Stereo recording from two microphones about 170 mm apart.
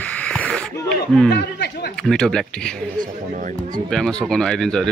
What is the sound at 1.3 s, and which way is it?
Speech, 80° left.